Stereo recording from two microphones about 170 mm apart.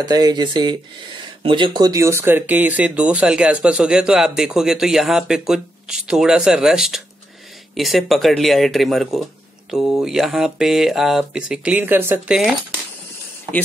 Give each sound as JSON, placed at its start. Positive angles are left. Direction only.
{"t": 0.0, "sound": "speech", "side_deg": -25}